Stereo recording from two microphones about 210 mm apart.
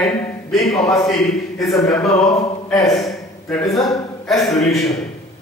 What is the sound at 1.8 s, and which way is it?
Speech, 15° left (ahead or behind).